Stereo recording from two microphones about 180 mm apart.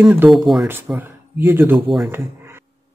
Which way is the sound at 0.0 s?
10° right (ahead or behind).